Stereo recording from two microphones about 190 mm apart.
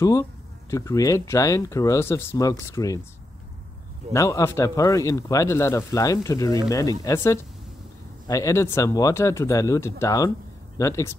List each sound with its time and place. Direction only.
0.0 s speech: 15° left (ahead or behind)
4.1 s speech: 15° left (ahead or behind)